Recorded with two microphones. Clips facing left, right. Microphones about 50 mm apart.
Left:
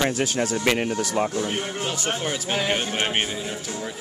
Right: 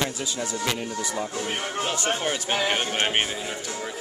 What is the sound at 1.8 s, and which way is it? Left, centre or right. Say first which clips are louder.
Speech: right 3 dB; centre.